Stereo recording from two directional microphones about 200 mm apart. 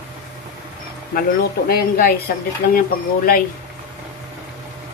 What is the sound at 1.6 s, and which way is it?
Speech, 50° left (ahead or behind).